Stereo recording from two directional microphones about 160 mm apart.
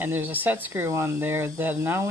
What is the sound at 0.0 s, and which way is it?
Speech, 10° right (ahead or behind).